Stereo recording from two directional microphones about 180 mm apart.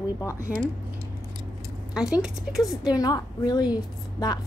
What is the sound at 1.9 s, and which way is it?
Speech, 5° right (ahead or behind).